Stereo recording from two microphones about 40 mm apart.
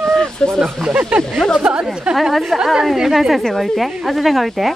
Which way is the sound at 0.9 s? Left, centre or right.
Right.